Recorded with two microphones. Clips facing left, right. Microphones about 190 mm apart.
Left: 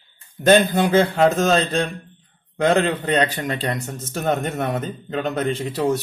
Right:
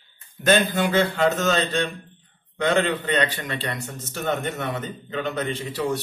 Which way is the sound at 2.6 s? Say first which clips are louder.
Left 3 dB; 40° left (ahead or behind).